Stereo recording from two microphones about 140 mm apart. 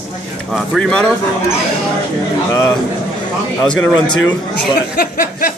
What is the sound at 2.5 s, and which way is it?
Speech, 20° left (ahead or behind).